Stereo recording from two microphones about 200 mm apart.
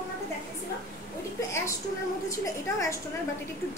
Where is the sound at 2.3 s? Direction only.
15° left (ahead or behind).